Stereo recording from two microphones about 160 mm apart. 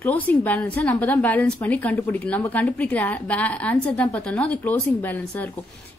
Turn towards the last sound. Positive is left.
turn(degrees=10)  # may be behind; listen again after turning